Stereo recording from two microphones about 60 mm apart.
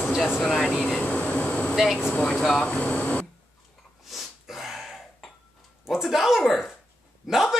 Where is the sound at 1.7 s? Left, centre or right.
Centre.